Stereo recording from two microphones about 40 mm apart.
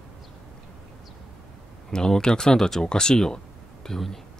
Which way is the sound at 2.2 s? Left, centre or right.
Centre.